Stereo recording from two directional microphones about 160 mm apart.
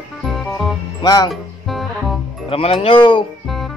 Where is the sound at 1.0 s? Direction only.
25° left (ahead or behind).